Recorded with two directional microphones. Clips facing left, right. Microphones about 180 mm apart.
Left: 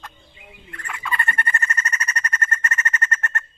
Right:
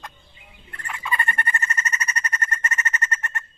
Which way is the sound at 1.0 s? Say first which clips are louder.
Even; 15° right (ahead or behind).